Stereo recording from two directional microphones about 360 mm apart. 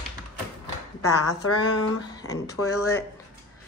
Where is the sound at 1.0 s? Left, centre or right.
Left.